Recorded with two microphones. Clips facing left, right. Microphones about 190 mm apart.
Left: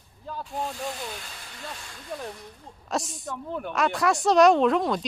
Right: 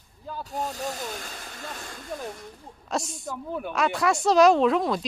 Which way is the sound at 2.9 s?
Centre (ahead or behind).